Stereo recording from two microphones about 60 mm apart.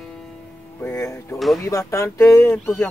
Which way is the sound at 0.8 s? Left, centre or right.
Left.